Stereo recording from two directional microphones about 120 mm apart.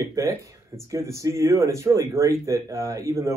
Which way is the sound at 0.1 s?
25° right (ahead or behind).